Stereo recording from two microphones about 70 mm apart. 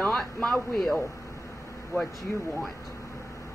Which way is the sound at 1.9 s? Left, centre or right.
Left.